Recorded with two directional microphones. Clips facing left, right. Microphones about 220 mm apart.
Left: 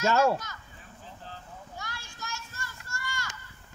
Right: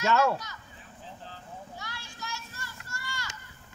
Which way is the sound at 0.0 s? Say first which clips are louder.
Left 1 dB; 45° left (ahead or behind).